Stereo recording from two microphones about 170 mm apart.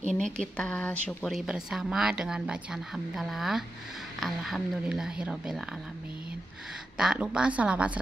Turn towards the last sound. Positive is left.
turn(degrees=-5)  # may be behind; listen again after turning